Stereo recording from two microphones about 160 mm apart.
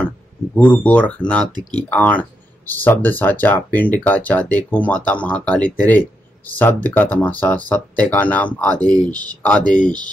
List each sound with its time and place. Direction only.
0.6 s speech: 10° left (ahead or behind)
1.5 s speech: 25° right (ahead or behind)
1.9 s speech: 10° left (ahead or behind)
8.9 s speech: 25° right (ahead or behind)
9.4 s speech: 10° left (ahead or behind)